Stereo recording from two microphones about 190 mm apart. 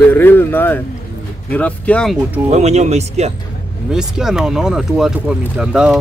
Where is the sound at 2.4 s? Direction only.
35° right (ahead or behind).